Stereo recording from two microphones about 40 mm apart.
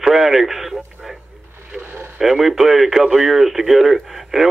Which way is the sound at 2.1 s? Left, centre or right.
Centre.